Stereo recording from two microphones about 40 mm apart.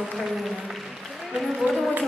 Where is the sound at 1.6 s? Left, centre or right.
Right.